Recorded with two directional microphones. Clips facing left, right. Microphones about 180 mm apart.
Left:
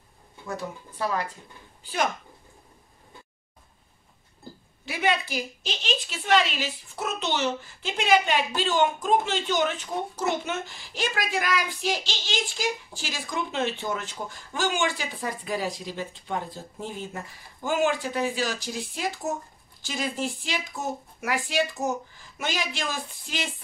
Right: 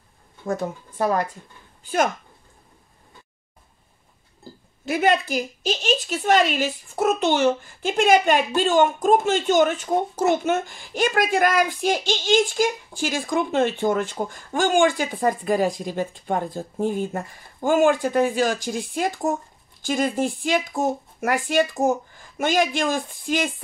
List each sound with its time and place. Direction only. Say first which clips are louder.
0.5 s a woman's voice: right 8 dB; 50° right (ahead or behind)
4.8 s a woman's voice: right 6 dB; 45° right (ahead or behind)